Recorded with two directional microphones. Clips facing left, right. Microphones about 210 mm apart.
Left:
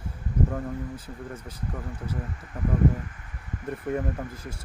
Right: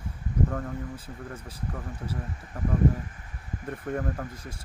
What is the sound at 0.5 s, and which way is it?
Speech, 5° left (ahead or behind).